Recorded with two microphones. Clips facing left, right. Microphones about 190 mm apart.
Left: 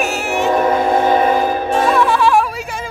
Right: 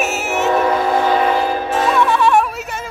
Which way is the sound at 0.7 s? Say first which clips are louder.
Left 2 dB; 20° left (ahead or behind).